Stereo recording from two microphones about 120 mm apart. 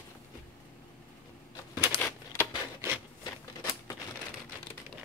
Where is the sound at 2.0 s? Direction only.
20° left (ahead or behind).